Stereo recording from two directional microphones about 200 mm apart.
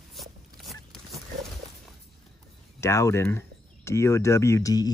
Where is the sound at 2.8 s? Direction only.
15° left (ahead or behind).